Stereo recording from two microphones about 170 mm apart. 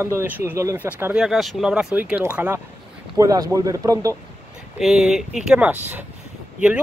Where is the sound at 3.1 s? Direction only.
20° right (ahead or behind).